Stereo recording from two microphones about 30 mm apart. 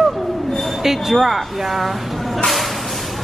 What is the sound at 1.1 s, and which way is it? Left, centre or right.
Speech, centre.